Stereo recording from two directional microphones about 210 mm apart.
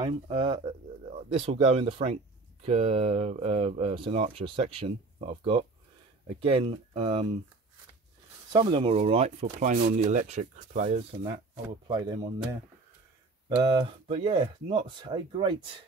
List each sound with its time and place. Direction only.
0.0 s speech: 25° right (ahead or behind)
8.5 s speech: 25° right (ahead or behind)
13.6 s speech: 25° right (ahead or behind)